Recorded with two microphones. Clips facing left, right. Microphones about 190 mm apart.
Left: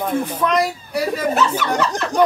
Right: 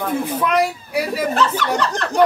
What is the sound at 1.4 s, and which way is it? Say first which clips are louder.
Speech: even; 10° left (ahead or behind).